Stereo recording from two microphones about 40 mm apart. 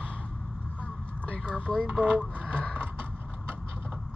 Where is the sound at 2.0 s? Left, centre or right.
Right.